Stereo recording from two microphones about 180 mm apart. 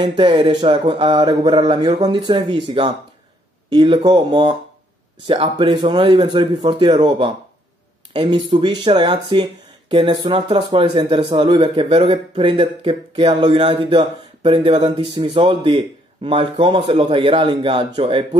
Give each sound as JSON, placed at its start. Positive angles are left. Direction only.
{"t": 0.0, "sound": "speech", "side_deg": -25}